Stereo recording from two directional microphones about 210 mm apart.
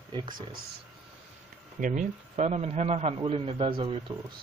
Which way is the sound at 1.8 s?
35° right (ahead or behind).